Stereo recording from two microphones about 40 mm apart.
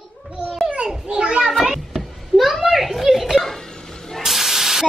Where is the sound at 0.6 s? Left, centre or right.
Right.